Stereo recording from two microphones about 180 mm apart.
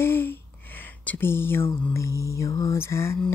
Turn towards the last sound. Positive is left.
turn(degrees=15)  # may be behind; listen again after turning